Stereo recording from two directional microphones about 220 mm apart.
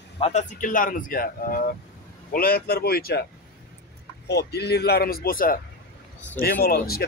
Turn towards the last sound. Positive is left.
turn(degrees=45)  # may be behind; listen again after turning